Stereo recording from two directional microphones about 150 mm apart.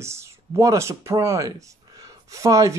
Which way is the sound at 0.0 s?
20° right (ahead or behind).